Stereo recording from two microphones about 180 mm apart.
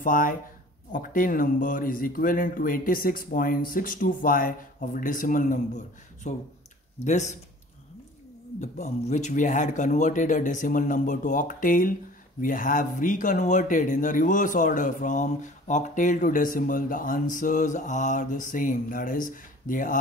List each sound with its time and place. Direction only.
0.0 s speech: 50° left (ahead or behind)
8.5 s speech: 40° left (ahead or behind)